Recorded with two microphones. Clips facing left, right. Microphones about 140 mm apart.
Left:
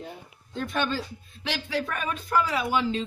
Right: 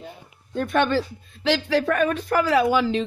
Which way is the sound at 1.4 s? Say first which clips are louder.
Right 9 dB; 90° right.